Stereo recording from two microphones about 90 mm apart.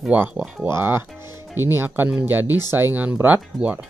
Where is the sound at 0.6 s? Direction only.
30° right (ahead or behind).